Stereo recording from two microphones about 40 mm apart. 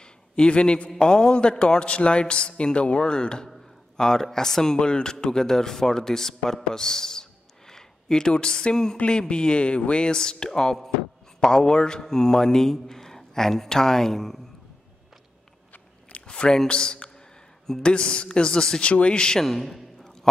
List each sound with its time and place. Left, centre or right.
0.0 s a man's voice: left; by 14.4 s centre
16.3 s a sound: left
16.6 s a man's voice: left
18.8 s a man's voice: left
19.4 s a man's voice: centre